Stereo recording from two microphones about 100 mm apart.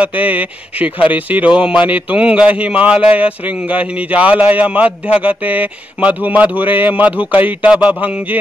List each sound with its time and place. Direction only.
0.0 s a man's voice: 15° right (ahead or behind)